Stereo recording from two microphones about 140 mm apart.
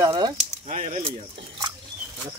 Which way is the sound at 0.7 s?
60° right (ahead or behind).